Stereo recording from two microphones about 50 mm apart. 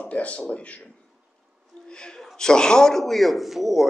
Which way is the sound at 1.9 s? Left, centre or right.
Centre.